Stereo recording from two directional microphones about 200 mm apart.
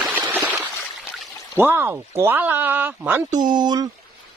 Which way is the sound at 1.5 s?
10° right (ahead or behind).